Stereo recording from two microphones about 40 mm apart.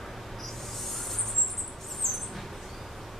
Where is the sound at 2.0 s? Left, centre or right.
Centre.